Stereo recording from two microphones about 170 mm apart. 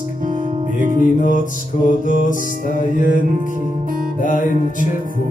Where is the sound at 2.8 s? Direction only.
50° left (ahead or behind).